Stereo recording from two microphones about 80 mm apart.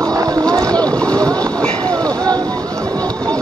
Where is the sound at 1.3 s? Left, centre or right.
Right.